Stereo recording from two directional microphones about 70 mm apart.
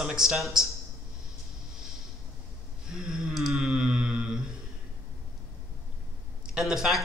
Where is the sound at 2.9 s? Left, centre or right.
Centre.